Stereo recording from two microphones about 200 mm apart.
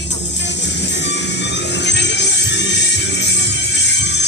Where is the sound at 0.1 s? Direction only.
60° left (ahead or behind).